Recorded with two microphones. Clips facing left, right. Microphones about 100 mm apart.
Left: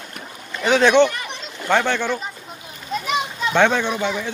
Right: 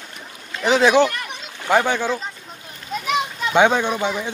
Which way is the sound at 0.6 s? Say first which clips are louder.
Left 1 dB; 5° right (ahead or behind).